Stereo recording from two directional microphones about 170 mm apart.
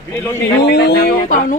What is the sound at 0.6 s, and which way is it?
Speech, 80° left.